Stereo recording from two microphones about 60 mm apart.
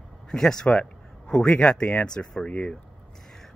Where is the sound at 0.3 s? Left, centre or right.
Centre.